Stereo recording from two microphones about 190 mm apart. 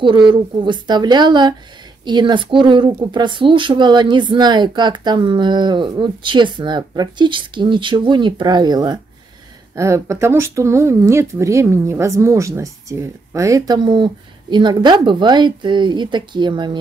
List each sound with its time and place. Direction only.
0.0 s speech: 25° right (ahead or behind)